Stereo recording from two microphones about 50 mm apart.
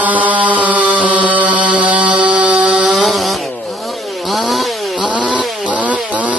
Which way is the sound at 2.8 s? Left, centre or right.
Centre.